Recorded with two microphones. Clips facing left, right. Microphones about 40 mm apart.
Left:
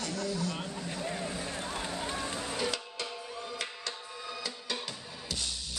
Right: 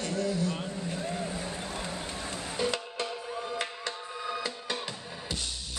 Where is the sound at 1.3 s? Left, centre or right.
Centre.